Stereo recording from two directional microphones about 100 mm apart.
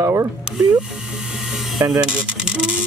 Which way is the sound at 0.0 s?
30° right (ahead or behind).